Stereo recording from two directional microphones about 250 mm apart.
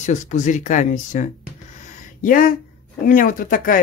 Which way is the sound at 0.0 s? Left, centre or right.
Left.